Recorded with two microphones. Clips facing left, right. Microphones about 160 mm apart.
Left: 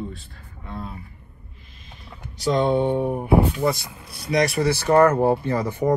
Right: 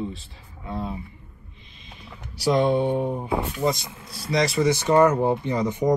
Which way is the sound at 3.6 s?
20° right (ahead or behind).